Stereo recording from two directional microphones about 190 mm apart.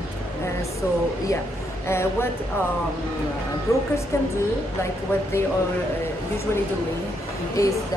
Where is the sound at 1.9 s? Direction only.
15° left (ahead or behind).